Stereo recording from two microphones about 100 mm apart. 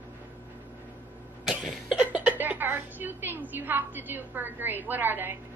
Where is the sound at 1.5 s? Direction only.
5° right (ahead or behind); by 5.4 s 20° right (ahead or behind).